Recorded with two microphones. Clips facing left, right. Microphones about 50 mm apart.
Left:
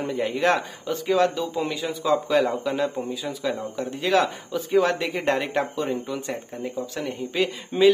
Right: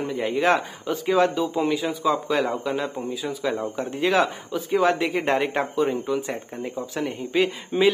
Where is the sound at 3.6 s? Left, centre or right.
Centre.